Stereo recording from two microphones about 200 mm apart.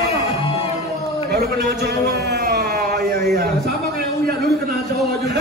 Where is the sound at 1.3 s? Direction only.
55° right (ahead or behind).